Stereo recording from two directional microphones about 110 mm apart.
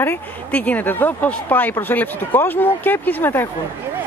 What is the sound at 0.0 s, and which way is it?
Speech, 15° left (ahead or behind).